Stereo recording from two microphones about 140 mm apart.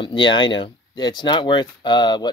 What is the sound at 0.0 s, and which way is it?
Speech, 35° left (ahead or behind).